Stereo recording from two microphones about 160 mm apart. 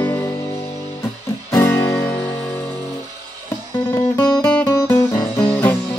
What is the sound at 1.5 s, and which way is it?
Music, 15° left (ahead or behind).